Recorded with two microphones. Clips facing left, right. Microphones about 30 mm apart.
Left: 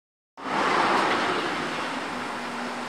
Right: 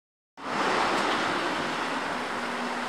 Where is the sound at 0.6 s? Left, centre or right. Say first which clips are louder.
Left 3 dB; centre.